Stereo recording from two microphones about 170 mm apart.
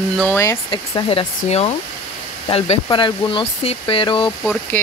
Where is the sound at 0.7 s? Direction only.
30° left (ahead or behind).